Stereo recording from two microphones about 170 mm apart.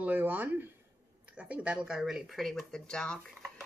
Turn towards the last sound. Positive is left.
turn(degrees=5)  # may be behind; listen again after turning